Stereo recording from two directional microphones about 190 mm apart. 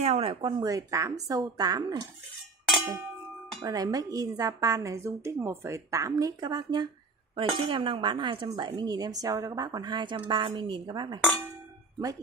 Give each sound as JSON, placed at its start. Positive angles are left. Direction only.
{"t": 0.0, "sound": "speech", "side_deg": -35}
{"t": 3.6, "sound": "a woman's voice", "side_deg": -20}